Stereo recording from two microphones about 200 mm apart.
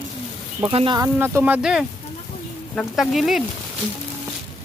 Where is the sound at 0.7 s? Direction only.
30° right (ahead or behind).